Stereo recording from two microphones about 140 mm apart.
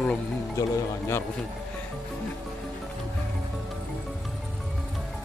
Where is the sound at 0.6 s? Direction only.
20° left (ahead or behind).